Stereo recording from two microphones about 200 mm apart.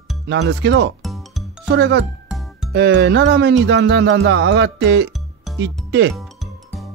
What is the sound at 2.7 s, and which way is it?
Speech, 60° right (ahead or behind).